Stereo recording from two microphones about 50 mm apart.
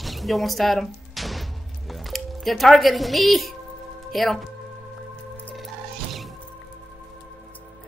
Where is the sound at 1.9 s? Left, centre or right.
Centre.